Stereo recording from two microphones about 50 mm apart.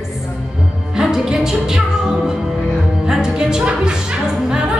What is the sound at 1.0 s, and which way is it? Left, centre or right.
Music, centre.